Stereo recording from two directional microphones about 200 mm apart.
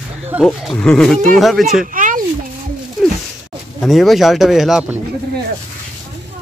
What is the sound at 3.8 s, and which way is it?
Speech, centre (ahead or behind).